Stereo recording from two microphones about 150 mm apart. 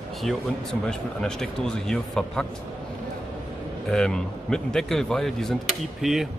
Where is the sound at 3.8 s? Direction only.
5° left (ahead or behind).